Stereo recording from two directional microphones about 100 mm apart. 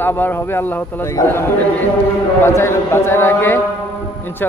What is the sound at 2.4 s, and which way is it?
A man's voice, 25° left (ahead or behind).